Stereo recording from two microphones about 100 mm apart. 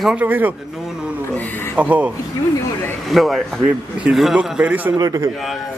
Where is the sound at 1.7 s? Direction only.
15° right (ahead or behind).